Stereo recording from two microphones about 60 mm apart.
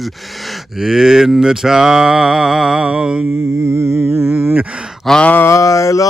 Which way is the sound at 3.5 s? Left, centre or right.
Right.